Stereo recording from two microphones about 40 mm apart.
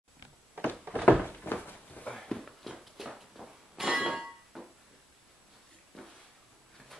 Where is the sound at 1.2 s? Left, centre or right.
Left.